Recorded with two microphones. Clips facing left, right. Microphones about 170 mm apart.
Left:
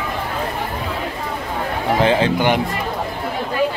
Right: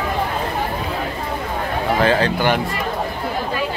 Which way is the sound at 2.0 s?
20° left (ahead or behind).